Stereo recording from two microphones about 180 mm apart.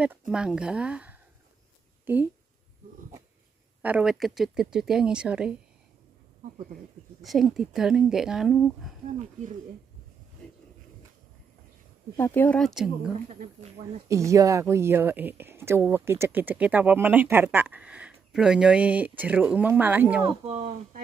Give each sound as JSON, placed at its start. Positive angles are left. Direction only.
{"t": 0.3, "sound": "speech", "side_deg": -5}
{"t": 3.8, "sound": "speech", "side_deg": -5}
{"t": 7.2, "sound": "speech", "side_deg": 0}
{"t": 10.4, "sound": "a sound", "side_deg": 5}
{"t": 12.2, "sound": "speech", "side_deg": 10}
{"t": 13.4, "sound": "speech", "side_deg": -40}
{"t": 14.0, "sound": "speech", "side_deg": -15}
{"t": 20.4, "sound": "speech", "side_deg": -40}